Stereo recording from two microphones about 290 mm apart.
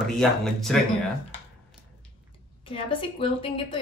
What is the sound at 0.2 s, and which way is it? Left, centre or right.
Speech, centre.